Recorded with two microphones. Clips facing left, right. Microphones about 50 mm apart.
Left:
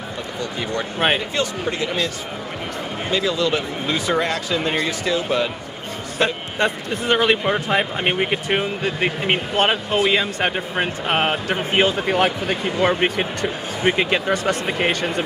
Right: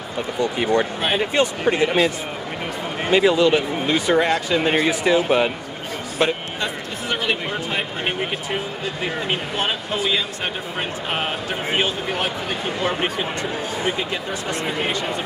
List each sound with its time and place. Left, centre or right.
0.4 s speech: right
3.3 s speech: centre
5.1 s speech: right
6.6 s speech: left